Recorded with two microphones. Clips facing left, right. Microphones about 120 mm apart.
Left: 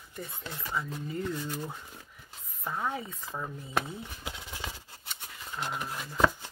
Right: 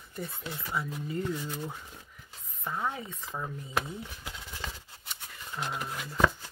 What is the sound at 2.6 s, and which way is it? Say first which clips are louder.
Speech: even; 5° left (ahead or behind).